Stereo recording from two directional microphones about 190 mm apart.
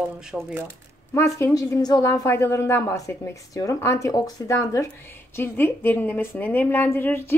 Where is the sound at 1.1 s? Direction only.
15° left (ahead or behind).